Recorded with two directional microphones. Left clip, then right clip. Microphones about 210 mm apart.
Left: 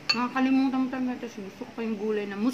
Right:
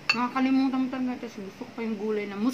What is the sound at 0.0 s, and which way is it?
Speech, centre (ahead or behind).